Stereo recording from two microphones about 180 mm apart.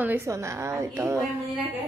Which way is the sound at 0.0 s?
10° right (ahead or behind).